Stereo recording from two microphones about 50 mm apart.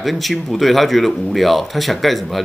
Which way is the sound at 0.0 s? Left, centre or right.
Centre.